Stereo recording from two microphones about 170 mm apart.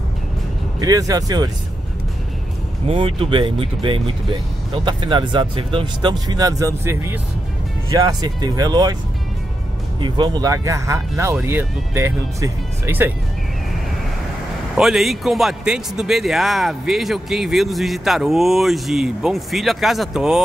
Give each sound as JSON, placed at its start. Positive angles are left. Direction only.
{"t": 0.7, "sound": "speech", "side_deg": -20}
{"t": 2.9, "sound": "speech", "side_deg": -35}
{"t": 9.9, "sound": "speech", "side_deg": -30}
{"t": 14.8, "sound": "a man's voice", "side_deg": 0}